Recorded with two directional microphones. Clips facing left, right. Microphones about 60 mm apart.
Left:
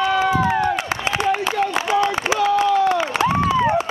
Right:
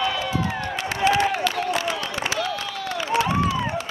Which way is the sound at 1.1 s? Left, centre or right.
Left.